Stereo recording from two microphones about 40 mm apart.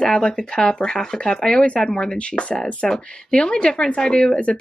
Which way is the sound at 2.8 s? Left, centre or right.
Centre.